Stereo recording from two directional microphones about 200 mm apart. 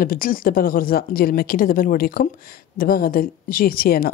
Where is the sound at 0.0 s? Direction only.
45° left (ahead or behind).